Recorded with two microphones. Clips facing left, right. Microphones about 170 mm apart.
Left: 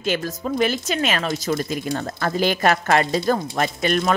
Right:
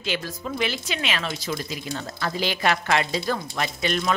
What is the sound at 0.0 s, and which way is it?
Speech, 45° left (ahead or behind).